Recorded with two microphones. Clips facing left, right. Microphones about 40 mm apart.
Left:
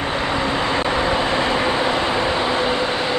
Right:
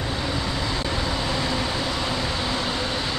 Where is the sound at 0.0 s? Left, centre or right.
Left.